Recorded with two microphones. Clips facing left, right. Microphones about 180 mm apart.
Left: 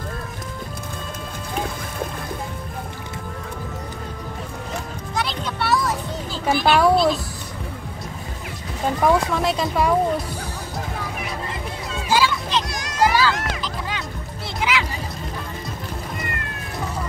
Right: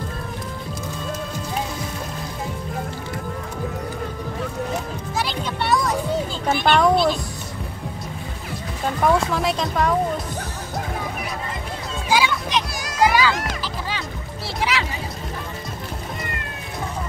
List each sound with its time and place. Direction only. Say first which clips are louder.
5.1 s music: even; centre (ahead or behind)
6.4 s a sound: left 2 dB; 5° left (ahead or behind)
9.0 s speech: even; centre (ahead or behind)
12.1 s music: even; 15° right (ahead or behind)
12.7 s children playing: right 1 dB; 10° right (ahead or behind)
14.6 s music: left 1 dB; 35° right (ahead or behind)